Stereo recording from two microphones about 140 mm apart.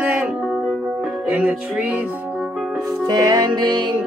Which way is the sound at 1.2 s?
5° right (ahead or behind).